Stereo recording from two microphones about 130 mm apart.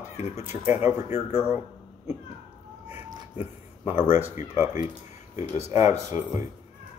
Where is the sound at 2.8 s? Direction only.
50° left (ahead or behind).